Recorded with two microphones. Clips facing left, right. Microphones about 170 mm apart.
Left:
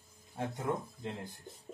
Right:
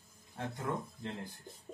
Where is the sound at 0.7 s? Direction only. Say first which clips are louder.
Left 2 dB; 20° left (ahead or behind).